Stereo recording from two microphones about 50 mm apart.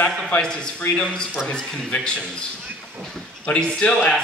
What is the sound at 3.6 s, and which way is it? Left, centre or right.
Speech, left.